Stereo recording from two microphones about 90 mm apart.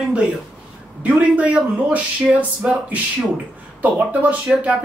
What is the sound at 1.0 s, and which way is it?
Speech, 15° right (ahead or behind).